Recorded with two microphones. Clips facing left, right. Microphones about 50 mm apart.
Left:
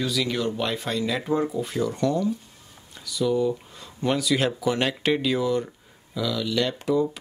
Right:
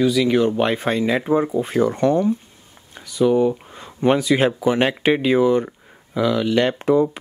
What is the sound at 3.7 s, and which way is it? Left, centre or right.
Speech, right.